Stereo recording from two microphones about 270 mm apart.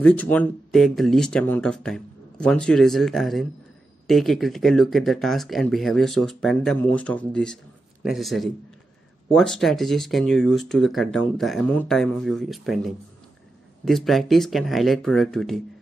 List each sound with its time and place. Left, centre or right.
0.0 s speech: centre